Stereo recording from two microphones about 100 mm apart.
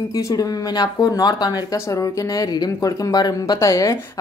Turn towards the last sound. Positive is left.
turn(degrees=35)  # may be behind; listen again after turning